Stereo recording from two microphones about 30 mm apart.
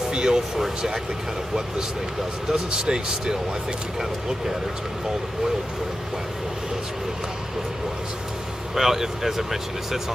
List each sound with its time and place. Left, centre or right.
0.1 s a sound: right
2.5 s speech: right
8.7 s speech: centre